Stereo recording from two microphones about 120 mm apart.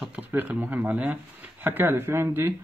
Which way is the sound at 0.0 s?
15° right (ahead or behind).